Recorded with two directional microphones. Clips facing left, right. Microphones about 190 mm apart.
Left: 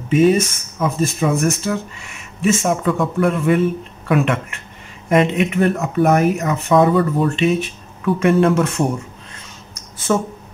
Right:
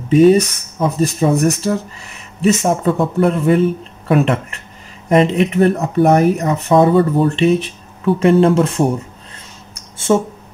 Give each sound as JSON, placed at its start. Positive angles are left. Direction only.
{"t": 0.1, "sound": "speech", "side_deg": -35}
{"t": 9.9, "sound": "speech", "side_deg": -25}